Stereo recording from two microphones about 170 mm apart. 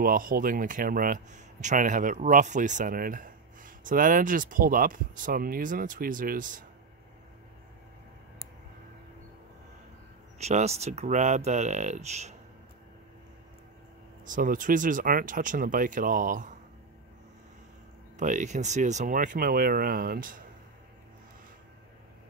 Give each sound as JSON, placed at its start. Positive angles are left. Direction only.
{"t": 0.0, "sound": "speech", "side_deg": -55}
{"t": 10.4, "sound": "speech", "side_deg": -40}
{"t": 14.2, "sound": "speech", "side_deg": -50}
{"t": 18.1, "sound": "speech", "side_deg": -45}